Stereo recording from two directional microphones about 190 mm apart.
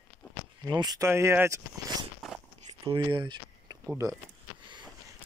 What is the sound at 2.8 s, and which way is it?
Speech, 25° right (ahead or behind).